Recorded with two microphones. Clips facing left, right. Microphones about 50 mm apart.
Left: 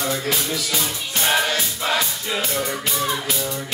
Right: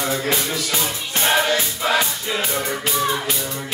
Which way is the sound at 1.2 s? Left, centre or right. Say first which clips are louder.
Right 2 dB; centre.